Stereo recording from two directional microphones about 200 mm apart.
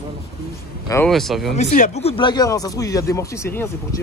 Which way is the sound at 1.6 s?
35° left (ahead or behind).